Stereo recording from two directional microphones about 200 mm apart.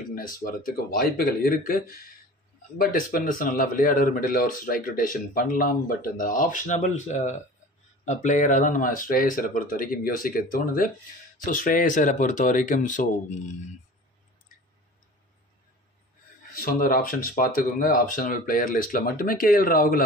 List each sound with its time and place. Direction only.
0.1 s speech: 45° left (ahead or behind)
16.5 s speech: 45° left (ahead or behind)